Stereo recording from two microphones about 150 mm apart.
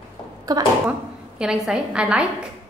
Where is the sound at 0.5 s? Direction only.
25° right (ahead or behind).